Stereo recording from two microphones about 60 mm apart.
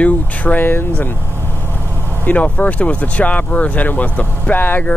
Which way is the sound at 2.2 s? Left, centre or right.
Left.